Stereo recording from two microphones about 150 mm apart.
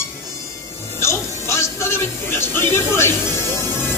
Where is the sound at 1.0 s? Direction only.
20° left (ahead or behind).